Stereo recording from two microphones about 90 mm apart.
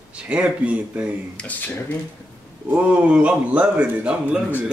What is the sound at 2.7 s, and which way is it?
Speech, 15° right (ahead or behind).